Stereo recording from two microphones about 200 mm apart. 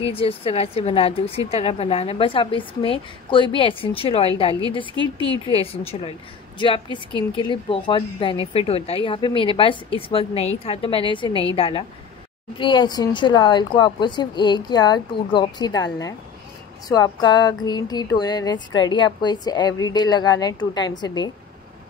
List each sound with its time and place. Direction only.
0.0 s a woman's voice: 30° left (ahead or behind)